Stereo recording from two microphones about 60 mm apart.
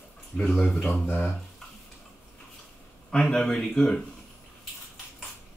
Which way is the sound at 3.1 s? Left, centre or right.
Centre.